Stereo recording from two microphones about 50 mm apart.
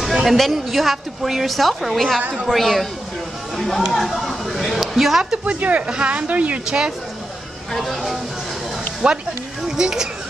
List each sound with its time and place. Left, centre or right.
0.2 s a woman's voice: centre
3.9 s a sound: centre
5.4 s speech: right
7.7 s a woman's voice: centre
9.0 s speech: centre